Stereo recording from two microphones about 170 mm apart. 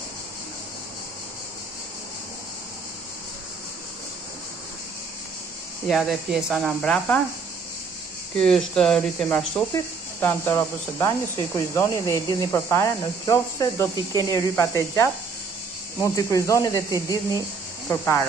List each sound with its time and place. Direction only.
5.9 s speech: centre (ahead or behind)
8.4 s speech: 5° left (ahead or behind)
9.8 s speech: 15° left (ahead or behind)